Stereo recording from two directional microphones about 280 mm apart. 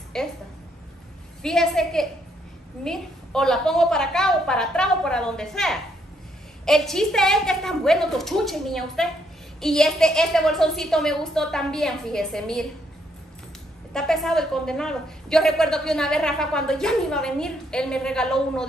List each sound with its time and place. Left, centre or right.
0.1 s a woman's voice: centre
1.4 s a woman's voice: centre
13.9 s a woman's voice: centre